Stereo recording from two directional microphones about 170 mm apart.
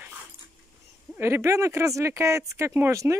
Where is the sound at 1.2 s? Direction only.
15° right (ahead or behind).